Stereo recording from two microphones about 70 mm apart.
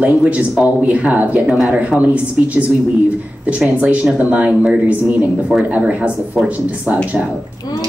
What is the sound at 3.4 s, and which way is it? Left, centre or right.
Speech, centre.